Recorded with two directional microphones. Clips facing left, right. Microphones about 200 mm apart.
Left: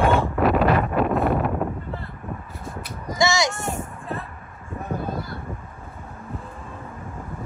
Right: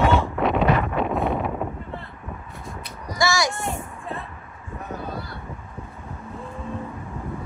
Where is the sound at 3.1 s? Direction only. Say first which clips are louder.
Left 1 dB; 20° left (ahead or behind).